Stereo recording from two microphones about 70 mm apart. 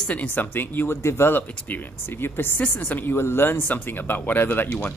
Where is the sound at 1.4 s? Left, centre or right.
Left.